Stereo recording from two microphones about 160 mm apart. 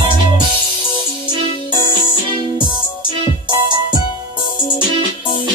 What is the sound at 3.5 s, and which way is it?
Music, 25° right (ahead or behind).